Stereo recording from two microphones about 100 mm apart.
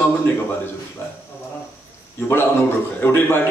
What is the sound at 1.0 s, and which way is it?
Speech, 25° left (ahead or behind).